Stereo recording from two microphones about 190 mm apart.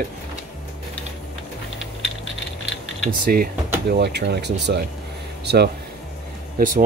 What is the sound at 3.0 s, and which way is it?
Speech, 50° right (ahead or behind).